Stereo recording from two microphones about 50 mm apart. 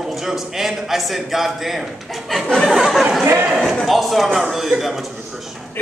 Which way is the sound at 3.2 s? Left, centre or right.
Right.